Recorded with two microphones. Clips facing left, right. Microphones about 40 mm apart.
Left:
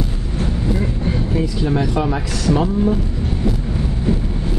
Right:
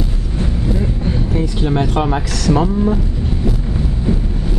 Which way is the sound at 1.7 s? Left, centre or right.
Right.